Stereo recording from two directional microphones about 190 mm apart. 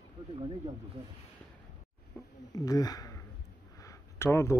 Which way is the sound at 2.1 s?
10° left (ahead or behind).